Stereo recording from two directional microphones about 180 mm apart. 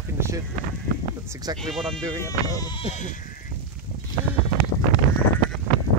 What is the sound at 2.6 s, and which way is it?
Sheep, 25° left (ahead or behind).